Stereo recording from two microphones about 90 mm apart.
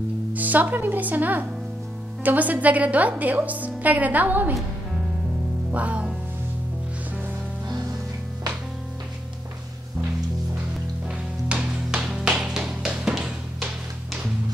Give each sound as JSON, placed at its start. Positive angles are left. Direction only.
{"t": 0.3, "sound": "a woman's voice", "side_deg": -20}
{"t": 5.7, "sound": "music", "side_deg": -15}
{"t": 11.4, "sound": "music", "side_deg": -10}